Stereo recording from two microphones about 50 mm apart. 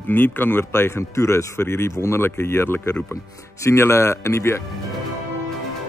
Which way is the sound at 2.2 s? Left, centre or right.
Left.